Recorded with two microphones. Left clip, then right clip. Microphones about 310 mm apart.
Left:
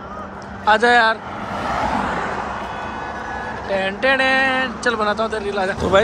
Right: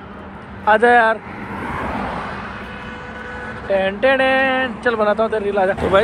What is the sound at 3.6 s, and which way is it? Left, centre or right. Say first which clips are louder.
Speech: right 3 dB; centre.